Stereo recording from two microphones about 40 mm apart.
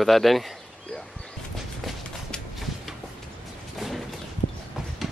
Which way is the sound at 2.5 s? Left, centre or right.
Centre.